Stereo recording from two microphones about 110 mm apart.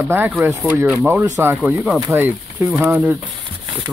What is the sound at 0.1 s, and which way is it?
Speech, 20° right (ahead or behind).